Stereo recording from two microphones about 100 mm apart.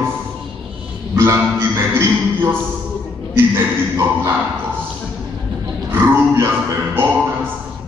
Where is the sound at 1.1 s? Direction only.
25° right (ahead or behind).